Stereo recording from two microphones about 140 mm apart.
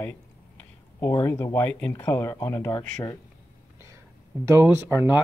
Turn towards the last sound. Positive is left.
turn(degrees=-15)  # may be behind; listen again after turning